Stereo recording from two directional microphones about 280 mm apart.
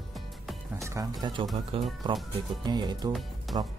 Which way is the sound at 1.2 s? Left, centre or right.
Centre.